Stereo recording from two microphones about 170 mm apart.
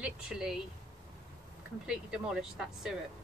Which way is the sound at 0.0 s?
5° right (ahead or behind).